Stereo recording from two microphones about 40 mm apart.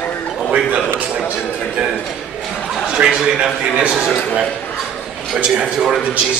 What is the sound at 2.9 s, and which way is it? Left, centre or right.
Speech, centre.